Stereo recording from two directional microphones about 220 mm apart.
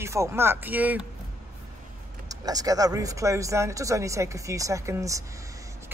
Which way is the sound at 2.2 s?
15° right (ahead or behind).